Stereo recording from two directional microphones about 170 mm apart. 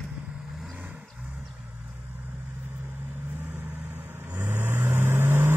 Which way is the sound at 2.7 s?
10° right (ahead or behind).